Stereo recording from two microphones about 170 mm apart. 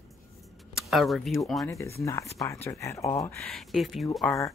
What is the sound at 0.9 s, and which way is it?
Speech, centre (ahead or behind).